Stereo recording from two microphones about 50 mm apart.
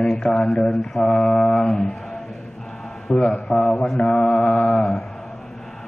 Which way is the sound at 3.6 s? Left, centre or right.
Left.